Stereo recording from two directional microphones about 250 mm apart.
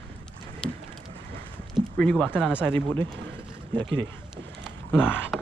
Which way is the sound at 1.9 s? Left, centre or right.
Centre.